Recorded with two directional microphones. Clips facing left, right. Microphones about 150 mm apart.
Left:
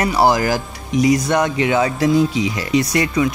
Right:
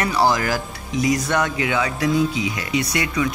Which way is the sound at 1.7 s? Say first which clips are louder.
Left 5 dB; 35° left (ahead or behind).